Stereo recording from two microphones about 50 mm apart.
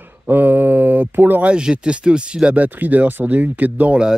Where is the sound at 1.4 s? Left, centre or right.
Centre.